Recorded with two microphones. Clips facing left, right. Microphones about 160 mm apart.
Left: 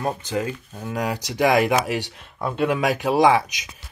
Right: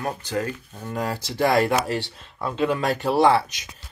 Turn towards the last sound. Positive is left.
turn(degrees=15)  # may be behind; listen again after turning